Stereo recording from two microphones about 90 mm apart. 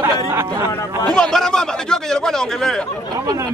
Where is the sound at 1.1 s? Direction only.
5° left (ahead or behind).